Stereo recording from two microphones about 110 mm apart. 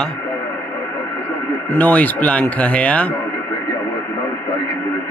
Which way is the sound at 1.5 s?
15° left (ahead or behind).